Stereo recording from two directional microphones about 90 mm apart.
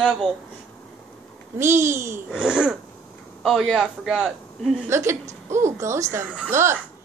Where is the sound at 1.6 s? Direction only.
30° right (ahead or behind).